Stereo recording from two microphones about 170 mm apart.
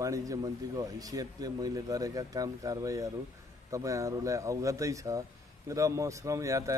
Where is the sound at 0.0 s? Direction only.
20° right (ahead or behind).